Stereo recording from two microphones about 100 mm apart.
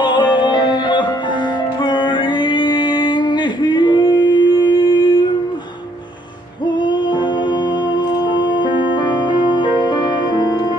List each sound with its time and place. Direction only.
0.0 s music: 50° left (ahead or behind)
8.3 s music: 50° left (ahead or behind)